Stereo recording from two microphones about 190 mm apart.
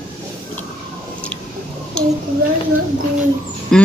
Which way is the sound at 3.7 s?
Centre (ahead or behind).